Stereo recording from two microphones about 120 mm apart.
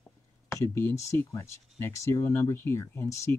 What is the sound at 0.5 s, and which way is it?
Speech, 20° left (ahead or behind).